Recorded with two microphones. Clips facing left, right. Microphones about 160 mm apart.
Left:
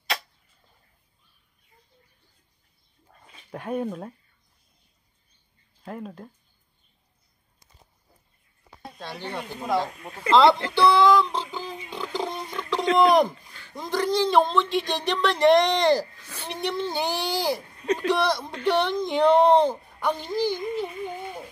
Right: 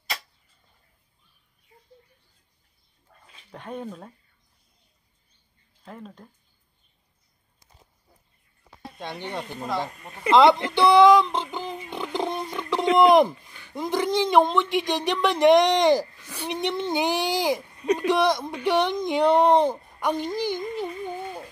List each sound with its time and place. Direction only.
3.5 s speech: 10° left (ahead or behind)
5.9 s speech: 5° left (ahead or behind)
9.2 s speech: 20° right (ahead or behind)
21.0 s a sound: 15° left (ahead or behind)